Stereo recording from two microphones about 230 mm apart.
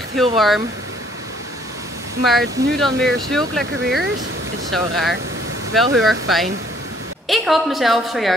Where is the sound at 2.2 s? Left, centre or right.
Centre.